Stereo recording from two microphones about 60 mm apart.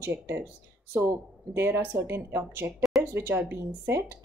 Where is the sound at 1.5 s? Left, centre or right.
Right.